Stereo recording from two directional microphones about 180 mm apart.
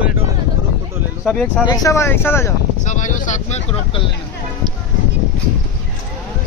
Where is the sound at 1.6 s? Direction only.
15° left (ahead or behind).